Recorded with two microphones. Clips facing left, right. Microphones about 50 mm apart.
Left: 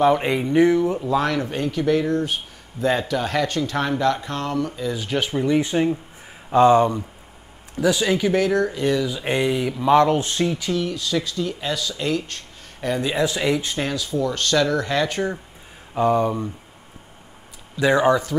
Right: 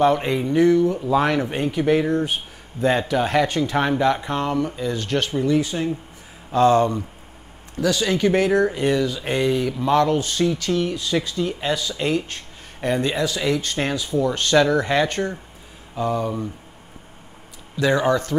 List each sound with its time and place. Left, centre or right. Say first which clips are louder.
0.0 s speech: even; centre
1.2 s speech: right 2 dB; right
4.8 s speech: right 1 dB; centre
5.6 s speech: left 3 dB; left
6.5 s speech: left 2 dB; centre
8.3 s speech: right 2 dB; centre
9.0 s speech: even; centre
10.0 s speech: even; left
10.7 s speech: right 1 dB; centre
13.4 s speech: left 1 dB; centre
13.7 s speech: right 2 dB; centre
15.9 s speech: left 5 dB; left
17.7 s speech: left 2 dB; centre